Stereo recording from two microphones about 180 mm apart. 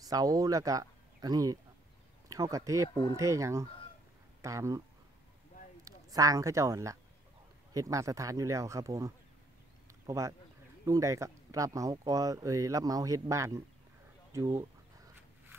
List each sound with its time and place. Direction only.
0.0 s speech: 20° right (ahead or behind)
5.9 s a woman's voice: 20° right (ahead or behind)